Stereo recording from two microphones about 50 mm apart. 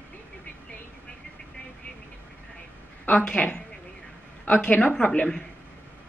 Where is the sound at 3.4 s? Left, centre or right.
Left.